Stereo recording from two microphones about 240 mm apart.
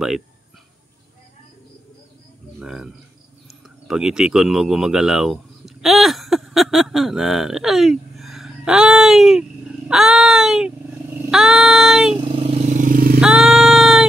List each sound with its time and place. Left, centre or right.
2.6 s child singing: centre
3.4 s speech: centre
11.2 s child singing: centre
12.3 s vehicle: right
13.2 s child singing: centre